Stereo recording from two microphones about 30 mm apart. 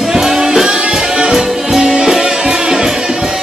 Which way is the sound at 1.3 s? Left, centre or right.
Centre.